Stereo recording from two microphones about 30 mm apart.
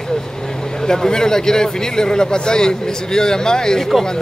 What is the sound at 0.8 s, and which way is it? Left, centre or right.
A man's voice, left.